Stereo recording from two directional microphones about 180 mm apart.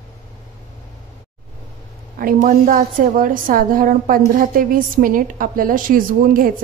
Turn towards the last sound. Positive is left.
turn(degrees=-50)  # may be behind; listen again after turning